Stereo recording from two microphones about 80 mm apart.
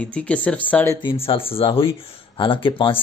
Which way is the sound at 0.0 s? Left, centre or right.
Centre.